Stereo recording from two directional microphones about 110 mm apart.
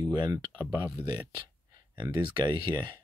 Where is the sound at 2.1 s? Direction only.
40° right (ahead or behind).